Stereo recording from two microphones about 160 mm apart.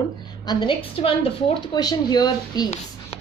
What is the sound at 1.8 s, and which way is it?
Speech, 25° left (ahead or behind).